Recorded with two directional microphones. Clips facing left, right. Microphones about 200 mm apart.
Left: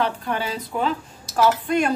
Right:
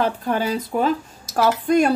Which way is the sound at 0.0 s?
40° right (ahead or behind).